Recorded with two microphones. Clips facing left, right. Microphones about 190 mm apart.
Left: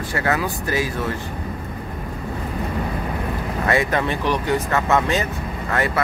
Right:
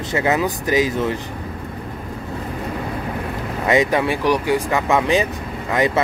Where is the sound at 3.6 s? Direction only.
15° right (ahead or behind).